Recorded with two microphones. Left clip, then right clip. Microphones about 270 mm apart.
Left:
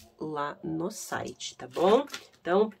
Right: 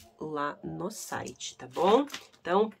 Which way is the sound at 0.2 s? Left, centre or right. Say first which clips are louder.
Even; centre.